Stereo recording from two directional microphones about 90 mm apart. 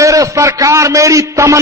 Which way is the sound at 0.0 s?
35° right (ahead or behind).